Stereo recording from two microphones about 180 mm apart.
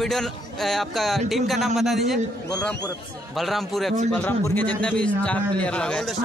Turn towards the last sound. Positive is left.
turn(degrees=5)  # may be behind; listen again after turning